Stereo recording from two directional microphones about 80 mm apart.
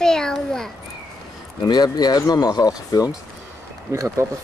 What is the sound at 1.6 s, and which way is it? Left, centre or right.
Speech, left.